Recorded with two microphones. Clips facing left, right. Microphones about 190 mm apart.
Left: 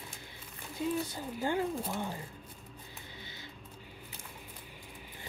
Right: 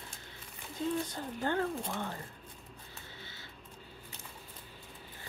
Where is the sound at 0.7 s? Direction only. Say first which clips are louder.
Left 1 dB; 10° left (ahead or behind).